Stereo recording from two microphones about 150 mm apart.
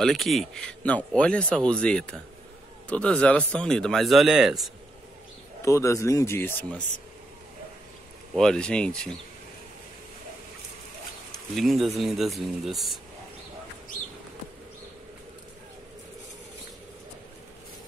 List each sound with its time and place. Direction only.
0.0 s speech: centre (ahead or behind)
5.6 s speech: 20° left (ahead or behind)
8.4 s speech: 5° left (ahead or behind)
11.5 s speech: centre (ahead or behind)